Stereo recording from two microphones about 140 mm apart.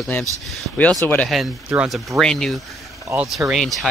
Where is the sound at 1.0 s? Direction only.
10° left (ahead or behind).